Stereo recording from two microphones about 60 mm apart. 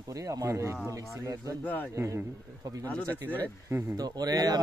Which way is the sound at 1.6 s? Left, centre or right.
Left.